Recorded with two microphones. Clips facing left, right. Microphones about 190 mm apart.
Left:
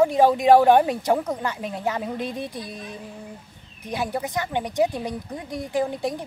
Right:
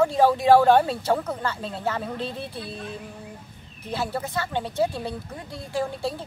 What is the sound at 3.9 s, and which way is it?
Speech, 15° left (ahead or behind).